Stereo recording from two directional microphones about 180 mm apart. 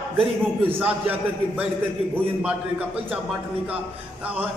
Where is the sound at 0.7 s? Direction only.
10° right (ahead or behind).